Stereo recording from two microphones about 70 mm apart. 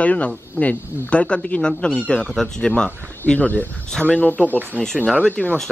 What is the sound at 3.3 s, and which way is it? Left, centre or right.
Speech, left.